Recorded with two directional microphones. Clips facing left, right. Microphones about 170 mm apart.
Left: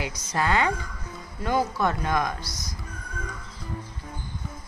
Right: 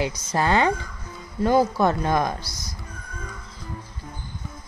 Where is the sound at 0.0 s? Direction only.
30° right (ahead or behind).